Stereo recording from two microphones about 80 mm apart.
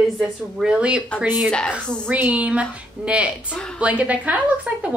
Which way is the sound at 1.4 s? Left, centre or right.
Centre.